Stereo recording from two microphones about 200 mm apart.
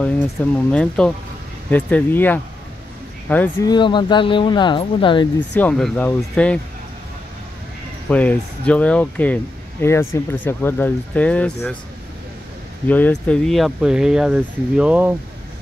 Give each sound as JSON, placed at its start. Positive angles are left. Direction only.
{"t": 0.0, "sound": "speech", "side_deg": 5}
{"t": 3.6, "sound": "speech", "side_deg": 20}
{"t": 5.6, "sound": "speech", "side_deg": 5}
{"t": 8.1, "sound": "speech", "side_deg": 5}
{"t": 12.8, "sound": "speech", "side_deg": 10}